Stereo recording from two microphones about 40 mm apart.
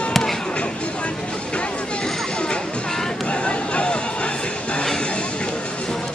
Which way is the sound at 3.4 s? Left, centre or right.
Left.